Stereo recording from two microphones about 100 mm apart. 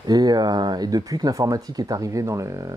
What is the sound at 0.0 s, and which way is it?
Speech, 40° right (ahead or behind).